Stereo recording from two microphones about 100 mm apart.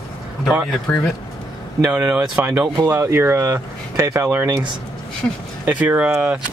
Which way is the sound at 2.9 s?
25° right (ahead or behind).